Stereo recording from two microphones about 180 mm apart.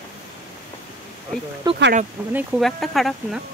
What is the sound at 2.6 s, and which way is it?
Speech, centre (ahead or behind).